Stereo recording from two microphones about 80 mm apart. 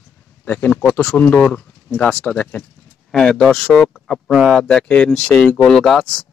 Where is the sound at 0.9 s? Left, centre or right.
Centre.